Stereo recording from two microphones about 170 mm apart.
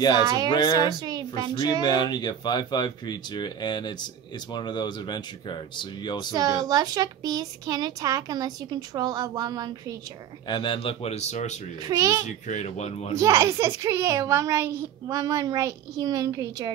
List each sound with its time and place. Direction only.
0.5 s speech: 20° left (ahead or behind)
0.8 s a child's voice: 25° right (ahead or behind)
1.6 s speech: 25° left (ahead or behind)
6.3 s a child's voice: 25° right (ahead or behind)
10.5 s a man's voice: 30° left (ahead or behind)
11.8 s a child's voice: 20° right (ahead or behind)
12.3 s a man's voice: 45° left (ahead or behind)
13.1 s a child's voice: 15° right (ahead or behind)